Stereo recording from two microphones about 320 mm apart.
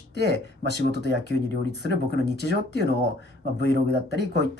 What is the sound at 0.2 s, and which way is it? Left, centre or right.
Speech, left.